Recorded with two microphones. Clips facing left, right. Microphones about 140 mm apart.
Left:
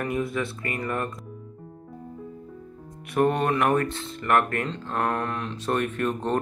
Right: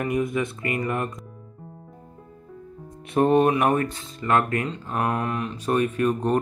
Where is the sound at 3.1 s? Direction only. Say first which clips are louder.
Right 4 dB; 25° right (ahead or behind).